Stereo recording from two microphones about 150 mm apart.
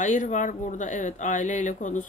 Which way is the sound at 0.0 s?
55° left (ahead or behind).